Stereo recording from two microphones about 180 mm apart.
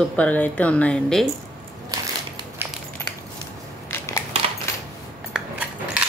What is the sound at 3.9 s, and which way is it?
Crushing, 15° left (ahead or behind).